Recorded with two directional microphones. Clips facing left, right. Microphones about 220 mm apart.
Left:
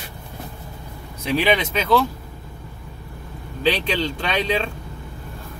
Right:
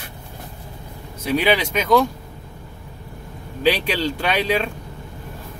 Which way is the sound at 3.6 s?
10° right (ahead or behind).